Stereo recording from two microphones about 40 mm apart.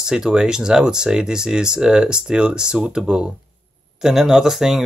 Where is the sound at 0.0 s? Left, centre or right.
Centre.